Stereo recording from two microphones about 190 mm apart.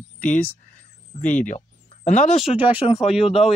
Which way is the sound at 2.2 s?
Centre (ahead or behind).